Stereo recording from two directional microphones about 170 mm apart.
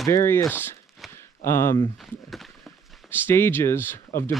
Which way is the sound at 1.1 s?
15° left (ahead or behind).